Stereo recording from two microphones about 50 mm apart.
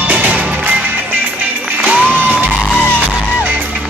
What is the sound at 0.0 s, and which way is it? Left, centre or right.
Music, right.